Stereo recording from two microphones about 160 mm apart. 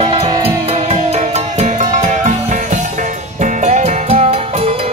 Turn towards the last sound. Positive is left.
turn(degrees=-40)  # may be behind; listen again after turning